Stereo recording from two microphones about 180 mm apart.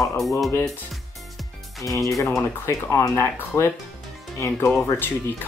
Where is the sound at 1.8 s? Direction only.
15° left (ahead or behind).